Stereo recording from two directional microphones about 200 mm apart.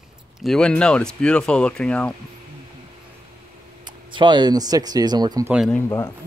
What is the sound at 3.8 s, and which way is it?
Speech, 25° right (ahead or behind).